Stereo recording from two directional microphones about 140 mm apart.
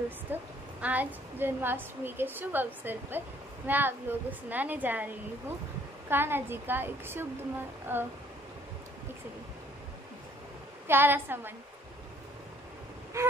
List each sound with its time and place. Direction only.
0.3 s a woman's voice: 10° right (ahead or behind)
10.9 s a woman's voice: 15° right (ahead or behind)
13.2 s a sound: 20° right (ahead or behind)